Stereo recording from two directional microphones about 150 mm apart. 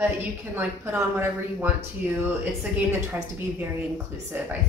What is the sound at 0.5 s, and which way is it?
Speech, 10° right (ahead or behind).